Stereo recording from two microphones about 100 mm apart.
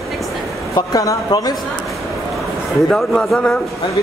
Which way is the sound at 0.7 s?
40° left (ahead or behind).